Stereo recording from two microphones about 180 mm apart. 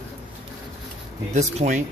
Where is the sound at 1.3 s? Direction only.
40° right (ahead or behind).